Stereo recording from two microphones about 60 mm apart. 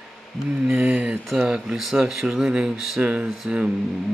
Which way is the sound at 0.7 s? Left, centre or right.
Right.